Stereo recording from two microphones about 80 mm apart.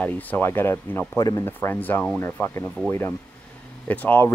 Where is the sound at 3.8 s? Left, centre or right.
Left.